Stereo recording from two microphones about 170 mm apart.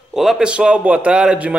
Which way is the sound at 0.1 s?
Centre (ahead or behind).